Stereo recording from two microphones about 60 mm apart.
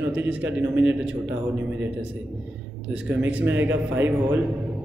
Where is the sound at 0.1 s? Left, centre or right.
Right.